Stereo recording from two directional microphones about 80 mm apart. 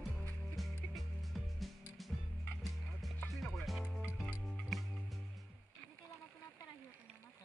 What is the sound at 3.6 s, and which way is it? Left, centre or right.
Music, centre.